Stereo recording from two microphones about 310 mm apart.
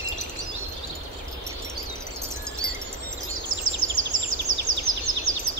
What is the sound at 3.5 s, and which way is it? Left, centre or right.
Bird vocalization, right.